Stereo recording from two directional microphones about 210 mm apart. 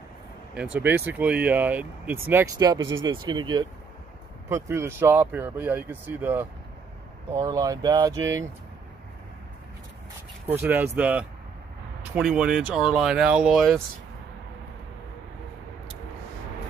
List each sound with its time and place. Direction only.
0.7 s speech: 10° right (ahead or behind)
2.8 s speech: 65° right (ahead or behind)
3.1 s speech: 20° right (ahead or behind)
10.5 s speech: 10° right (ahead or behind)